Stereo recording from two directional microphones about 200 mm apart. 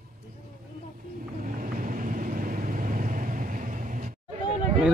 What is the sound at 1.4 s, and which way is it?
Vehicle, 40° right (ahead or behind).